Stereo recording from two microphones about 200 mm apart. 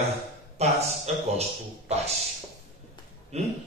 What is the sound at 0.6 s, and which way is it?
Speech, 30° right (ahead or behind).